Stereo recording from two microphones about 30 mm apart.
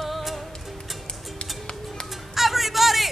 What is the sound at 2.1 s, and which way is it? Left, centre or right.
Music, centre.